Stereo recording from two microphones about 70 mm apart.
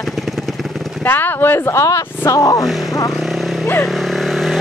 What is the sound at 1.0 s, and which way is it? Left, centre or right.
Speech, left.